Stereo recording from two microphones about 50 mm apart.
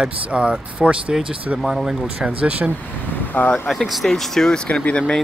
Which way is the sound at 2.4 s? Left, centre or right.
Right.